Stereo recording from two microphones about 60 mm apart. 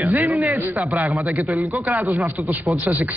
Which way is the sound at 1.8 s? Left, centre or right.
Right.